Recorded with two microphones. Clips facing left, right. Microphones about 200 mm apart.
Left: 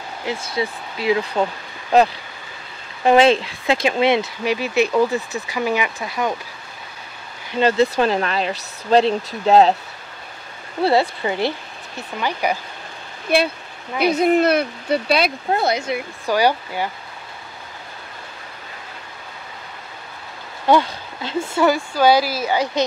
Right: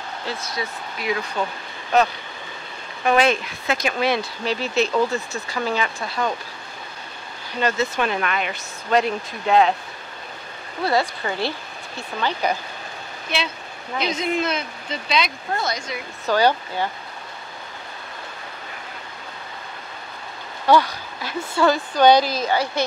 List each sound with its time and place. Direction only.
0.4 s speech: 25° left (ahead or behind)
7.5 s speech: 30° left (ahead or behind)
10.8 s speech: 25° left (ahead or behind)
14.0 s speech: 60° left (ahead or behind)
16.3 s speech: 15° left (ahead or behind)
20.6 s speech: 20° left (ahead or behind)
21.6 s speech: 10° left (ahead or behind)